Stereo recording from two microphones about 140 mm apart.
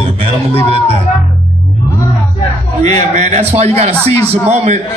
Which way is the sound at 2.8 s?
55° right (ahead or behind).